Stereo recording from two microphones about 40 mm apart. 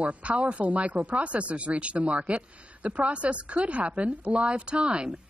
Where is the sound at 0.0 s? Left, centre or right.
Right.